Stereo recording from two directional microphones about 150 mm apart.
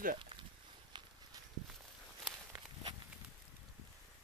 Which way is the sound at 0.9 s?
30° right (ahead or behind).